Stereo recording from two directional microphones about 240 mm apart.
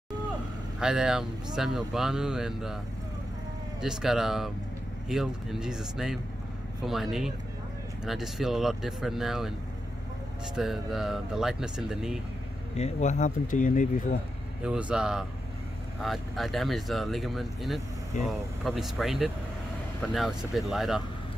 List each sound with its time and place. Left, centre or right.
0.7 s speech: centre
3.8 s speech: centre
10.5 s speech: centre
12.7 s speech: left
14.6 s speech: centre
18.1 s speech: left
18.6 s speech: centre